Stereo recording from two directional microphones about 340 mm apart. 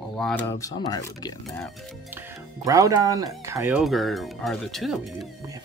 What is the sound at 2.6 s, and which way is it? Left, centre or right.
Speech, centre.